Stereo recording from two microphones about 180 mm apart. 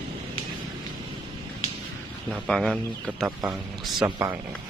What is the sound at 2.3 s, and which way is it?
Speech, centre (ahead or behind).